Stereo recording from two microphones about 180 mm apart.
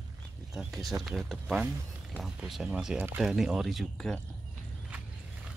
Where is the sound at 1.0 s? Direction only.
Centre (ahead or behind).